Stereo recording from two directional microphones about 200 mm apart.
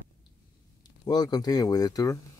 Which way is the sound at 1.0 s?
20° left (ahead or behind).